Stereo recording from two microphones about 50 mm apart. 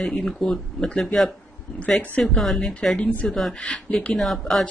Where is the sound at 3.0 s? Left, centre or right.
Left.